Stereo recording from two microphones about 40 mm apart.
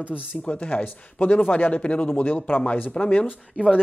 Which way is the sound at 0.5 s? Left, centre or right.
Left.